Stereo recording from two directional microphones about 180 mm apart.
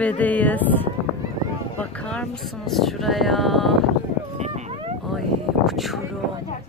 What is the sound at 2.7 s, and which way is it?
Speech, centre (ahead or behind).